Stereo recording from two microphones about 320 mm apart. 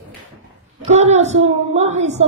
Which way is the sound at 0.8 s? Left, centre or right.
Right.